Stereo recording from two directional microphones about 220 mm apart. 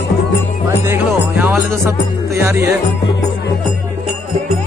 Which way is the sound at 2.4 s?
10° right (ahead or behind).